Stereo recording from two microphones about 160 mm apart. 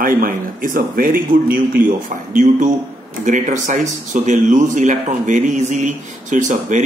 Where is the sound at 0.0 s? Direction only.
60° right (ahead or behind).